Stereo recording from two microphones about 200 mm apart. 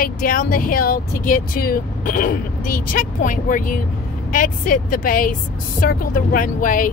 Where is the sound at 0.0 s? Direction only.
45° left (ahead or behind).